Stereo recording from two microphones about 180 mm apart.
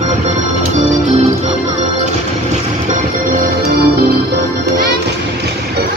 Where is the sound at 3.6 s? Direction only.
60° right (ahead or behind).